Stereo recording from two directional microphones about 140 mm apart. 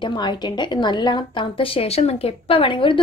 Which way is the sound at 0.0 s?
35° left (ahead or behind).